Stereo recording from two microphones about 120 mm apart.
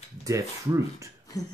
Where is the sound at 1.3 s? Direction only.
30° left (ahead or behind).